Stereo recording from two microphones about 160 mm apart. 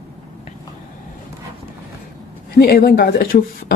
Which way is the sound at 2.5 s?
70° left (ahead or behind).